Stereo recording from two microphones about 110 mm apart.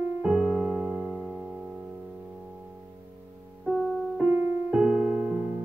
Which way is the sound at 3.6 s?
5° left (ahead or behind).